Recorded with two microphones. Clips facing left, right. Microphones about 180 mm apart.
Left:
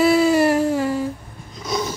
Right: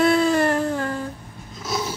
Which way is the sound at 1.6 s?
5° right (ahead or behind).